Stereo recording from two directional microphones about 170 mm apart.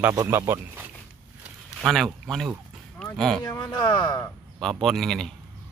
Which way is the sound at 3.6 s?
25° left (ahead or behind).